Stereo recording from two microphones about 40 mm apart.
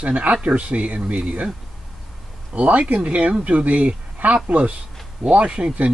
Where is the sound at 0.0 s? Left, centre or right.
Right.